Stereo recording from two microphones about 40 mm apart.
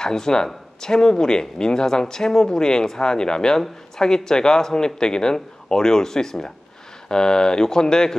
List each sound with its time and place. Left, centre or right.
0.0 s speech: centre